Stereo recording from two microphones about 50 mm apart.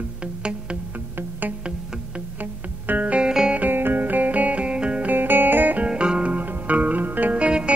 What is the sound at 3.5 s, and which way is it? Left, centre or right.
Music, right.